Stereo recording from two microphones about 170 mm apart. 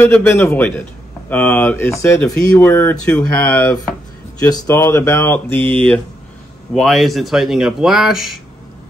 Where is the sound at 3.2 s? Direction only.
20° left (ahead or behind).